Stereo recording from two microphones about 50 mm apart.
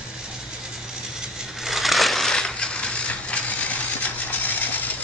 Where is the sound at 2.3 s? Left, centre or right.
Centre; by 3.8 s left.